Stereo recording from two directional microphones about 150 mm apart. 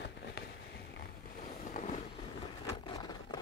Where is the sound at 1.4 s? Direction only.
55° left (ahead or behind).